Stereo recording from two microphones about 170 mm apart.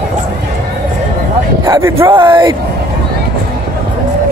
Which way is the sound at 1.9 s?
30° right (ahead or behind).